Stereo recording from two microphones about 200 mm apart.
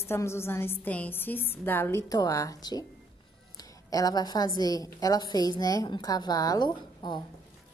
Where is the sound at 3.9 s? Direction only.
20° left (ahead or behind).